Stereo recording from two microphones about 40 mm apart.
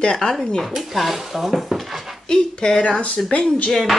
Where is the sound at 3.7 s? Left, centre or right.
Centre.